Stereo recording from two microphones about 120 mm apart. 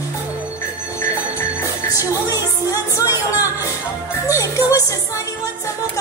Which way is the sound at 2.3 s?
30° left (ahead or behind).